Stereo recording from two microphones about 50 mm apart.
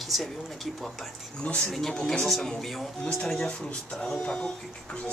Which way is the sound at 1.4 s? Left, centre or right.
Left.